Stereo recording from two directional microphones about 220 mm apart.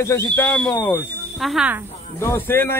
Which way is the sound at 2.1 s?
10° left (ahead or behind).